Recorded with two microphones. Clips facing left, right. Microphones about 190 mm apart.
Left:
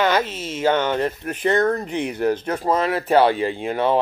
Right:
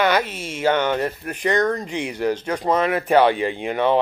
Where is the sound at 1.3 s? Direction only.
15° right (ahead or behind).